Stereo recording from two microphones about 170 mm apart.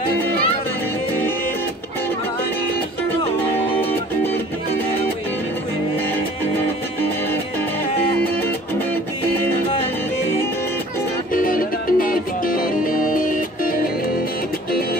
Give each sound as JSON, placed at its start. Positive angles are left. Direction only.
{"t": 8.2, "sound": "music", "side_deg": 10}
{"t": 11.3, "sound": "music", "side_deg": 55}